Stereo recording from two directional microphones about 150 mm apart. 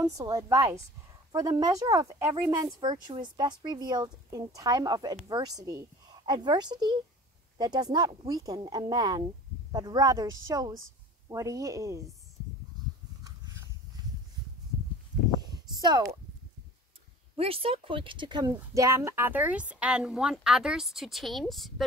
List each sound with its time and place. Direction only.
0.0 s a woman's voice: 25° right (ahead or behind)
15.5 s a sound: 30° right (ahead or behind)
17.4 s speech: 40° right (ahead or behind); by 21.8 s centre (ahead or behind)